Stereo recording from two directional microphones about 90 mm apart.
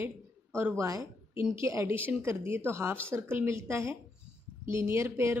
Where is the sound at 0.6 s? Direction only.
25° right (ahead or behind).